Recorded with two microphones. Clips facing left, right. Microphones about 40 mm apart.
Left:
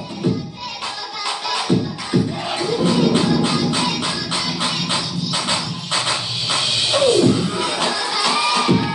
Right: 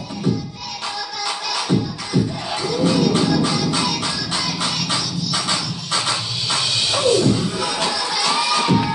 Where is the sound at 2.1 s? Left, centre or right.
Left.